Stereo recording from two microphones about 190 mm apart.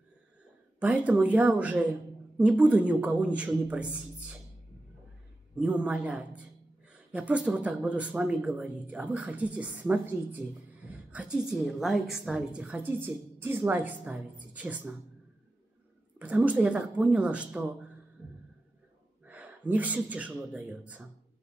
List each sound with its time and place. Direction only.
0.7 s a woman's voice: 5° right (ahead or behind)
5.6 s a woman's voice: 5° right (ahead or behind)
16.2 s a woman's voice: 10° right (ahead or behind)
19.2 s speech: 10° right (ahead or behind)